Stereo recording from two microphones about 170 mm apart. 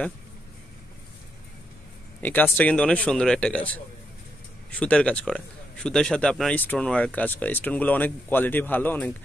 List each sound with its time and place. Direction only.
2.2 s speech: 10° left (ahead or behind)